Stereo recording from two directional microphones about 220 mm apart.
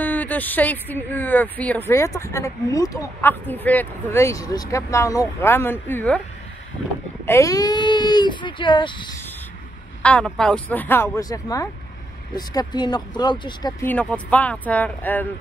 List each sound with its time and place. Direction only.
0.0 s speech: 5° left (ahead or behind)
7.2 s speech: 15° left (ahead or behind)
10.0 s speech: 5° left (ahead or behind); by 13.8 s 20° left (ahead or behind)
13.8 s speech: 5° left (ahead or behind)